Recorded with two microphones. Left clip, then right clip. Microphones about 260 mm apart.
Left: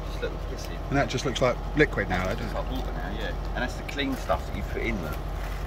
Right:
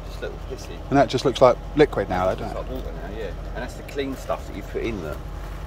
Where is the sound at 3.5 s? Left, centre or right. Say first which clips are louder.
Right 1 dB; right.